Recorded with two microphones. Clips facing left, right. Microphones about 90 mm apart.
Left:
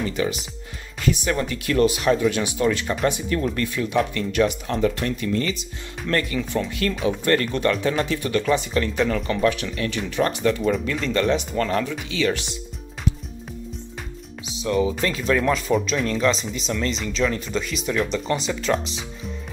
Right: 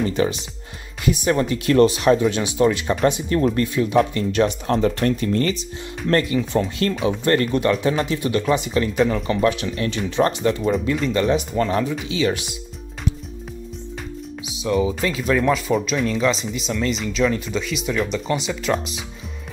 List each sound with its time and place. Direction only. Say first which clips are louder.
0.0 s speech: right 4 dB; 35° right (ahead or behind)
3.3 s speech: right 6 dB; 35° right (ahead or behind)
3.6 s speech: right 4 dB; 20° right (ahead or behind)
11.0 s speech: right 2 dB; 5° right (ahead or behind)
11.5 s speech: right 2 dB; 20° right (ahead or behind)
14.7 s speech: right 1 dB; 10° right (ahead or behind)